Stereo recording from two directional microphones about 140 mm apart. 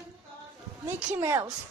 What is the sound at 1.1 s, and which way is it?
Speech, 20° right (ahead or behind).